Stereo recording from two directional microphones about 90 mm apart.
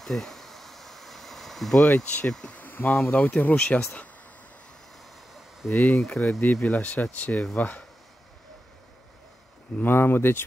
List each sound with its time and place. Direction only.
0.0 s a sound: 5° left (ahead or behind)
1.9 s speech: 15° left (ahead or behind)
2.2 s speech: 5° left (ahead or behind)
2.5 s insect: 20° left (ahead or behind)
3.1 s speech: 15° left (ahead or behind)
5.7 s speech: 25° left (ahead or behind)
5.9 s speech: 5° left (ahead or behind)
6.4 s speech: 20° left (ahead or behind)
9.8 s speech: 25° left (ahead or behind)